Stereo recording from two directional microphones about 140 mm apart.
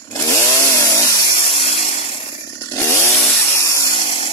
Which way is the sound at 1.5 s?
50° left (ahead or behind).